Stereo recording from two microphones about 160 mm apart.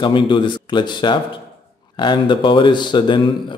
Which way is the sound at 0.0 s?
30° left (ahead or behind).